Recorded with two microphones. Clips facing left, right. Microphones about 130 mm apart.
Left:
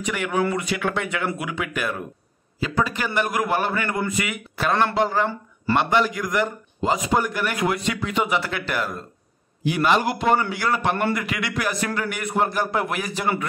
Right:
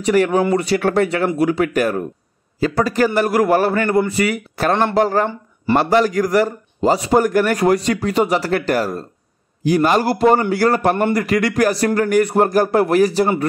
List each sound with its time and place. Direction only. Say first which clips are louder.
0.0 s a man's voice: right 8 dB; 35° right (ahead or behind)